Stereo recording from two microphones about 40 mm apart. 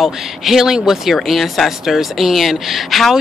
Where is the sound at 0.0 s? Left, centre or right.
Centre.